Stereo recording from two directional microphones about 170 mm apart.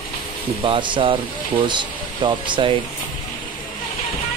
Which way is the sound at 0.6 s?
30° right (ahead or behind).